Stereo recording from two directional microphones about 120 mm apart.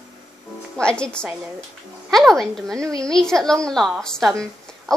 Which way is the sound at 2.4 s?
5° left (ahead or behind).